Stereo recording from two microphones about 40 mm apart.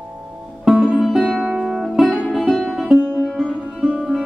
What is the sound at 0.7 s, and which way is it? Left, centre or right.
Music, centre.